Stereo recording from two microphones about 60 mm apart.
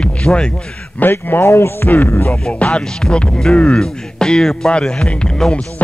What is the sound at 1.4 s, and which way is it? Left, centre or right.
Heart sounds, left.